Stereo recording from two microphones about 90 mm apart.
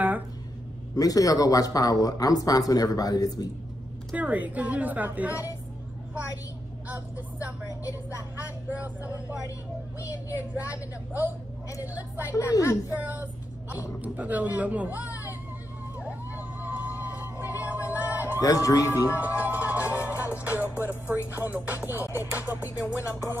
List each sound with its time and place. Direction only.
0.9 s speech: 40° left (ahead or behind)
4.1 s speech: 15° right (ahead or behind)
6.9 s speech: 15° right (ahead or behind)
8.2 s music: 20° right (ahead or behind)
10.3 s speech: 15° right (ahead or behind)
11.8 s music: 20° right (ahead or behind)
12.3 s a woman's voice: 35° left (ahead or behind)
12.9 s speech: 20° right (ahead or behind)
16.1 s a sound: 20° right (ahead or behind)
18.4 s a woman's voice: 40° left (ahead or behind)
19.0 s music: 20° right (ahead or behind)